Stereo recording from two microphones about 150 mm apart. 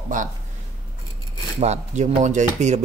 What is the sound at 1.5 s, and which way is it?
Speech, 45° right (ahead or behind).